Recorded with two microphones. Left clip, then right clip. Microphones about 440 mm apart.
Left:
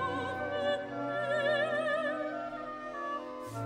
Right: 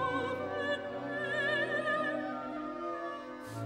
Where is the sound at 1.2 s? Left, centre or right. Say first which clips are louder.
Left 2 dB; centre.